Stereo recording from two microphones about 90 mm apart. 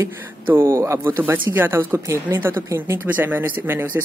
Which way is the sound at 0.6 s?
30° right (ahead or behind).